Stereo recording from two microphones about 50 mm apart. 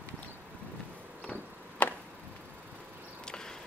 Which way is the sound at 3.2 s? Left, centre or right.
Centre.